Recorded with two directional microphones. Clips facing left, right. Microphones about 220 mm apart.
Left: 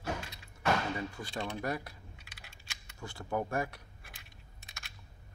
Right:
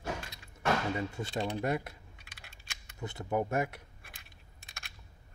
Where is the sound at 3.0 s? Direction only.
20° right (ahead or behind).